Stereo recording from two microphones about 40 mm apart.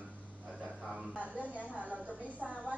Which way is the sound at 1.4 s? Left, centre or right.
Right.